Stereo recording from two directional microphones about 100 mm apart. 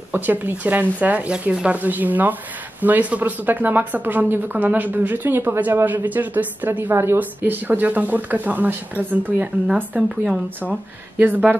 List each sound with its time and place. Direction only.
0.1 s a woman's voice: 20° right (ahead or behind)